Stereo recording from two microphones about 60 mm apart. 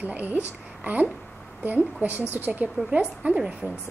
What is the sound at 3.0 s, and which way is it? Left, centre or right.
Speech, centre.